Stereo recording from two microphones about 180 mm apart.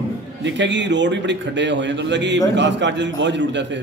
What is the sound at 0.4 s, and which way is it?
A man's voice, 85° right.